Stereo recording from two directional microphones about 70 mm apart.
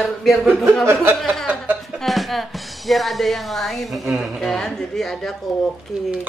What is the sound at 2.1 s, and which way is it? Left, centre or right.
Music, centre.